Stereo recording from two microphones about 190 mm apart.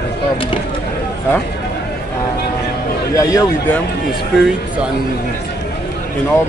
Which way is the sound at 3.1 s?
15° left (ahead or behind).